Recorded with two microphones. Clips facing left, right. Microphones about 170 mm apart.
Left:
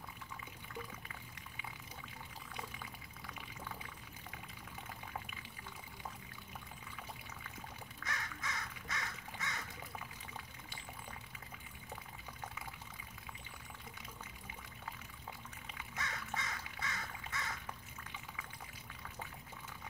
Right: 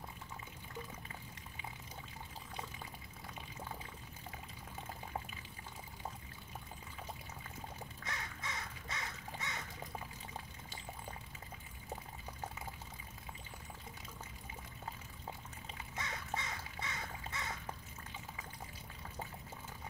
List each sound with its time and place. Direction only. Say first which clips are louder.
5.1 s water: right 3 dB; 30° right (ahead or behind)
8.0 s crow: left 2 dB; 25° right (ahead or behind)
11.9 s pour: right 4 dB; 35° right (ahead or behind)
15.6 s duck: even; 30° right (ahead or behind)